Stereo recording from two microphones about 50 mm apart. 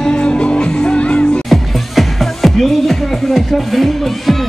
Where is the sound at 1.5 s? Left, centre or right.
Centre.